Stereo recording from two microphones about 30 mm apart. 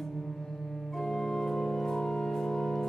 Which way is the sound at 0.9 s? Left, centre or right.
Centre.